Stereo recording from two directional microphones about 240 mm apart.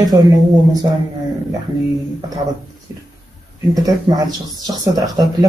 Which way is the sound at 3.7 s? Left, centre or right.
Centre.